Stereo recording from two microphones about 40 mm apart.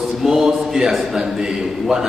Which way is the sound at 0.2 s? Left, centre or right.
Centre.